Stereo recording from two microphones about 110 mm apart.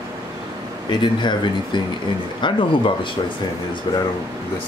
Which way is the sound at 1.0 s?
45° left (ahead or behind).